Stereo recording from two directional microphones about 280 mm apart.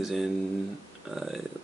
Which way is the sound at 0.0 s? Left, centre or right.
Centre.